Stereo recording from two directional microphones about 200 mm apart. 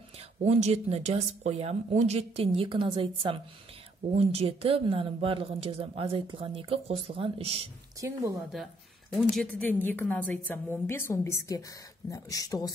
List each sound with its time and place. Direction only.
0.4 s speech: 35° right (ahead or behind)
8.0 s speech: 15° right (ahead or behind)
8.4 s a woman's voice: centre (ahead or behind); by 12.7 s 15° left (ahead or behind)